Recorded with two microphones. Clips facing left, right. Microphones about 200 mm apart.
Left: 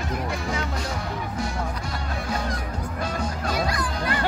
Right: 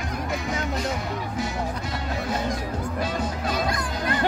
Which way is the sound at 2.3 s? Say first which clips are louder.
Right 2 dB; 25° right (ahead or behind).